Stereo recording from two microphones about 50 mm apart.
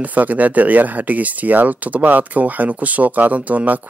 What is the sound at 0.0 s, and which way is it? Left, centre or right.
Speech, right.